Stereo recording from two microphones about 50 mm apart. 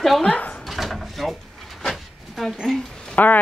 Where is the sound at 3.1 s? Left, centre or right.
Left.